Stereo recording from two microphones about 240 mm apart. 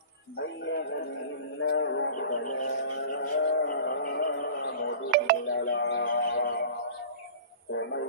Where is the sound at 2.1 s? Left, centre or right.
Left.